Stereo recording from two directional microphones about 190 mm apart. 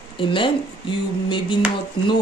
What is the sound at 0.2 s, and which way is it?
Speech, 25° left (ahead or behind).